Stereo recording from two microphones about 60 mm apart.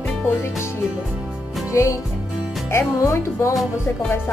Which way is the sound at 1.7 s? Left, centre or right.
Left.